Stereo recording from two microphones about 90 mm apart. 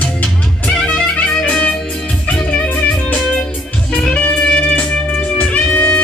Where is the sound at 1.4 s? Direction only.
15° left (ahead or behind).